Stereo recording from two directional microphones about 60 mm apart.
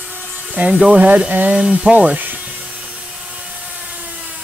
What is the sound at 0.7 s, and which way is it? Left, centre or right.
Speech, centre.